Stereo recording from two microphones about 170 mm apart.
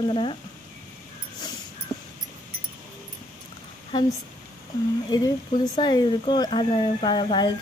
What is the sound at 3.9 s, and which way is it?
Speech, 25° left (ahead or behind).